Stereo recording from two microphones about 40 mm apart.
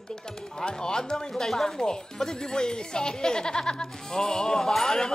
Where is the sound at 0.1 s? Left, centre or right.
Centre.